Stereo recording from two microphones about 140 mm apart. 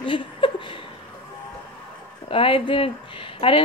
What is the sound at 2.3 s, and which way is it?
Speech, 40° left (ahead or behind).